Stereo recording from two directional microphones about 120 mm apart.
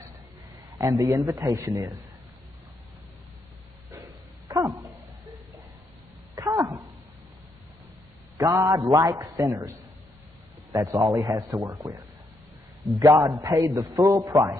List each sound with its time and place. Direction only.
0.7 s a man's voice: 30° right (ahead or behind)
4.5 s dog: 30° right (ahead or behind)
6.3 s a sound: 25° right (ahead or behind)
8.4 s a man's voice: 30° right (ahead or behind)
10.7 s a man's voice: 30° right (ahead or behind)